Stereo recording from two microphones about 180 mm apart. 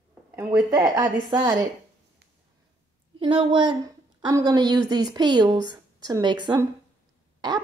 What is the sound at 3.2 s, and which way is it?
A woman's voice, 30° right (ahead or behind).